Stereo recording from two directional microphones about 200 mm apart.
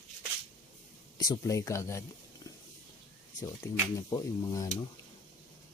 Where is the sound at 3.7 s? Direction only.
15° left (ahead or behind).